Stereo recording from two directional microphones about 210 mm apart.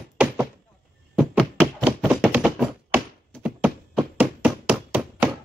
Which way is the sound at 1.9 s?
5° right (ahead or behind).